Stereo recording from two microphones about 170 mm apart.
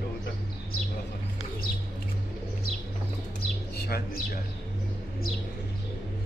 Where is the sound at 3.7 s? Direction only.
65° left (ahead or behind).